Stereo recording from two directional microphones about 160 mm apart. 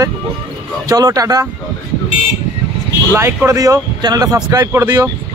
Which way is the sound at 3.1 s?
20° right (ahead or behind).